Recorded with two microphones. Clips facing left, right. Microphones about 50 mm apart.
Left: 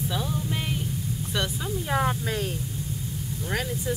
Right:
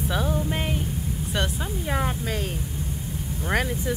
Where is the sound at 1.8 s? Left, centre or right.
Centre.